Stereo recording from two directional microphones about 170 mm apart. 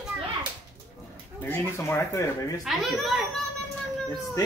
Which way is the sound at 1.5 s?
15° left (ahead or behind).